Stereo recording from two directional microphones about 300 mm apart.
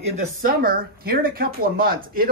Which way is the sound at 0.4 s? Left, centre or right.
Right.